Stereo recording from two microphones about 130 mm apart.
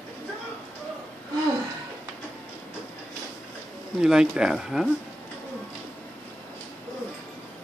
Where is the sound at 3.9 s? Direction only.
5° right (ahead or behind).